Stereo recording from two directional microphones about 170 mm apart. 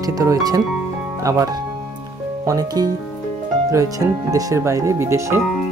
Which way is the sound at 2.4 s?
20° right (ahead or behind).